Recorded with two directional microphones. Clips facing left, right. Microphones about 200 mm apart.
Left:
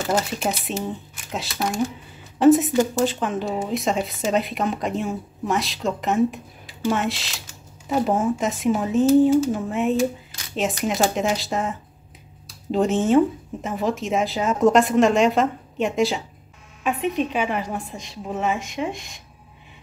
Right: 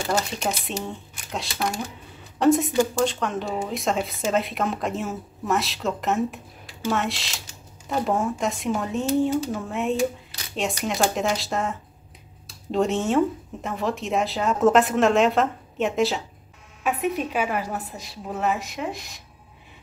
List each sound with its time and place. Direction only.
0.0 s speech: 5° left (ahead or behind)
12.7 s a woman's voice: centre (ahead or behind)